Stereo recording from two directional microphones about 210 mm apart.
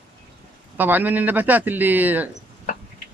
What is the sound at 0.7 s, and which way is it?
Speech, 10° right (ahead or behind).